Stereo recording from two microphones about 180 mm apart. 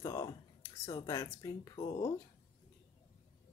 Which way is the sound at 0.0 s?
20° left (ahead or behind).